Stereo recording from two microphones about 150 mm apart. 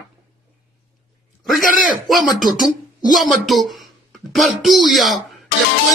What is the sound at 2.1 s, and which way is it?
Speech, centre (ahead or behind).